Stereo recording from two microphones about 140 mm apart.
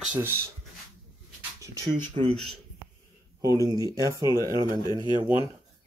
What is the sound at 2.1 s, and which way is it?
Speech, 45° right (ahead or behind).